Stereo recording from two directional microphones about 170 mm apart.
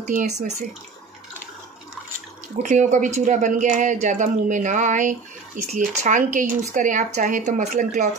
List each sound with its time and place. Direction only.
0.0 s speech: 45° right (ahead or behind)
2.6 s speech: 45° right (ahead or behind)